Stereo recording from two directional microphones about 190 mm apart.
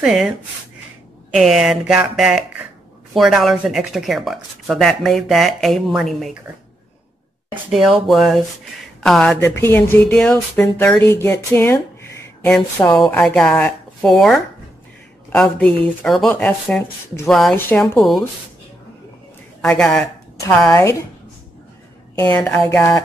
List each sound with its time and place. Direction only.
0.0 s speech: 5° right (ahead or behind)
1.3 s speech: centre (ahead or behind)
7.7 s speech: centre (ahead or behind)
9.4 s speech: 10° left (ahead or behind)
19.6 s speech: 5° left (ahead or behind)
20.4 s speech: 15° left (ahead or behind)
22.3 s speech: 10° left (ahead or behind)